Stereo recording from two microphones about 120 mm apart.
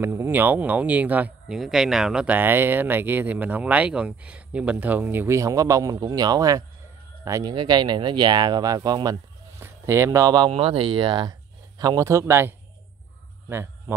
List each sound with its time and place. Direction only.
0.0 s a man's voice: 20° right (ahead or behind)
7.5 s speech: 40° right (ahead or behind)
9.6 s speech: 20° right (ahead or behind)
10.5 s speech: 50° right (ahead or behind)
11.8 s a man's voice: 30° right (ahead or behind)
13.5 s a sound: 20° right (ahead or behind)